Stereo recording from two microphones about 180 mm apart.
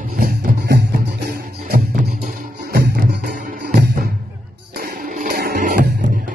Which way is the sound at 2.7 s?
55° right (ahead or behind).